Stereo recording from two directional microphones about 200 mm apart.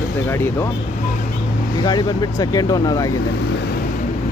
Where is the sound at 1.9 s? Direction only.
20° left (ahead or behind).